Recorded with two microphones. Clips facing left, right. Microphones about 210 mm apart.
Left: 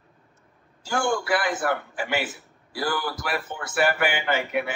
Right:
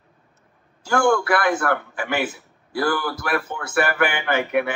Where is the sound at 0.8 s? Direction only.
60° right (ahead or behind).